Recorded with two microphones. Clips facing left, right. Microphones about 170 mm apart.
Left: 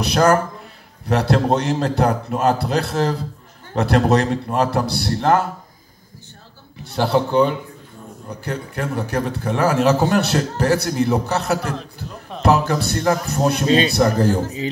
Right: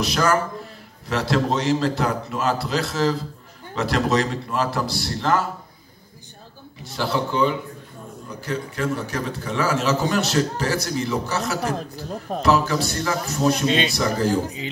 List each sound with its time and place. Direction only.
0.0 s a man's voice: 55° left (ahead or behind)
6.8 s a man's voice: 60° left (ahead or behind)
13.7 s speech: 40° left (ahead or behind)
13.9 s a man's voice: 55° left (ahead or behind)